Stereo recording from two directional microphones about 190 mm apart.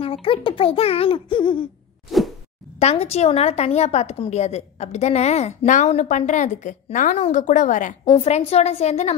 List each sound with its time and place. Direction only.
0.0 s a child's voice: 30° left (ahead or behind)
2.0 s a sound: centre (ahead or behind)
2.8 s a woman's voice: 35° left (ahead or behind)